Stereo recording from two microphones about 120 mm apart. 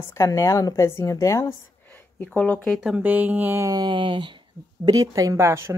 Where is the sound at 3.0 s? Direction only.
15° right (ahead or behind).